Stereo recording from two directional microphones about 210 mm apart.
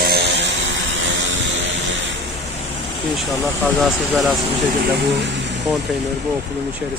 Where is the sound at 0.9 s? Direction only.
60° right (ahead or behind).